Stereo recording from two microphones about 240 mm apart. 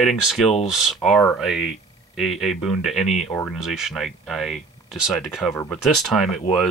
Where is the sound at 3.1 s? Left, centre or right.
Left.